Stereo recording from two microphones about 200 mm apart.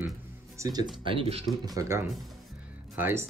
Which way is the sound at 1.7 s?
15° right (ahead or behind).